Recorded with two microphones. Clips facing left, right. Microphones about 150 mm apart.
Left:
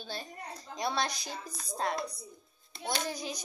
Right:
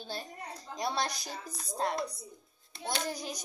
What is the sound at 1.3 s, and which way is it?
Speech, 10° right (ahead or behind).